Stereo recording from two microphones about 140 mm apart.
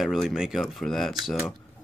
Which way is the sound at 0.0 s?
Centre (ahead or behind).